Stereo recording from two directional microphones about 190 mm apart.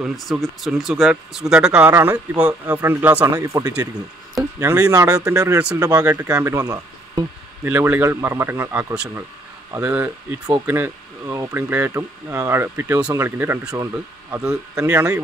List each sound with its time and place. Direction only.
0.0 s speech: centre (ahead or behind); by 15.1 s 15° right (ahead or behind)